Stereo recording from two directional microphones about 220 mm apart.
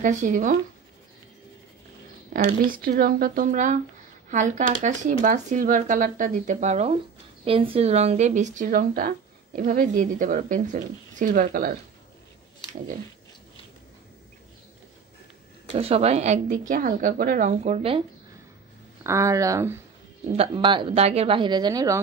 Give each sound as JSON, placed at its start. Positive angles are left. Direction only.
{"t": 0.0, "sound": "speech", "side_deg": -35}
{"t": 2.3, "sound": "speech", "side_deg": -40}
{"t": 15.7, "sound": "speech", "side_deg": -25}
{"t": 19.0, "sound": "speech", "side_deg": -15}